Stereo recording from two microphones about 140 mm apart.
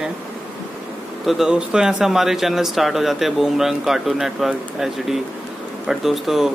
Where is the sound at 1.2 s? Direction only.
Centre (ahead or behind).